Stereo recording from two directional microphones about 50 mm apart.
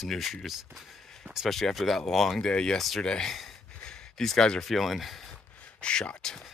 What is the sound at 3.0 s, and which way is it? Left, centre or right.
Speech, centre.